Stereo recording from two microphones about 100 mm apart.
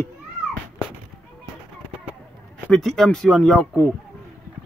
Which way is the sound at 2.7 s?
5° left (ahead or behind).